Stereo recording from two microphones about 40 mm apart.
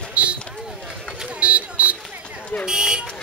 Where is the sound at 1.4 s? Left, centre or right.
Right.